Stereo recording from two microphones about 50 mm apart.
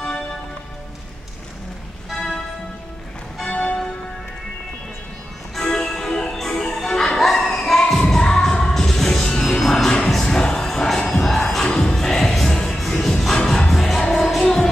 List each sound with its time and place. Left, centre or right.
2.0 s music: centre
3.4 s music: centre
5.5 s music: centre
6.9 s music: centre
9.8 s music: centre
11.6 s music: centre
13.7 s music: centre